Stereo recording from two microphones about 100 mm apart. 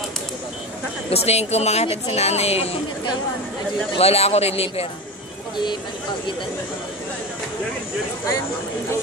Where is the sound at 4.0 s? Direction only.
90° left.